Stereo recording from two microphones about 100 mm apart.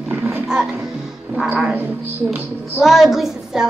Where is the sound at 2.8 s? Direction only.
Centre (ahead or behind).